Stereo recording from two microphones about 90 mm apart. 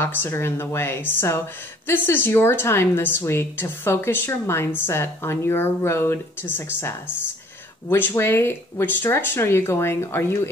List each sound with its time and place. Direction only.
0.0 s a woman's voice: 25° left (ahead or behind)
8.1 s a woman's voice: 30° left (ahead or behind)